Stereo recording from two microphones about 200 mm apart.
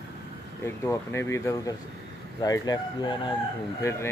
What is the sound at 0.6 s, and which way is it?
Speech, 10° left (ahead or behind).